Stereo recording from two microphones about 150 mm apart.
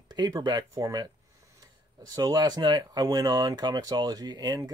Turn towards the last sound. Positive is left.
turn(degrees=-25)  # may be behind; listen again after turning